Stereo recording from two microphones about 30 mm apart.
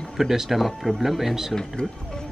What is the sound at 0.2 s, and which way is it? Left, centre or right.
Speech, centre.